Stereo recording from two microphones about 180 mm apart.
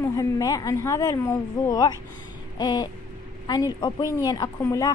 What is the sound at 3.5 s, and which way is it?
A woman's voice, 25° left (ahead or behind).